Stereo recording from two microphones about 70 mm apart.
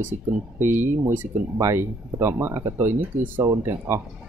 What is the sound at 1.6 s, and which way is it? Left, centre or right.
Speech, right.